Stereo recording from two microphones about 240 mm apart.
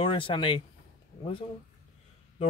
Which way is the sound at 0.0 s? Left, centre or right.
Left.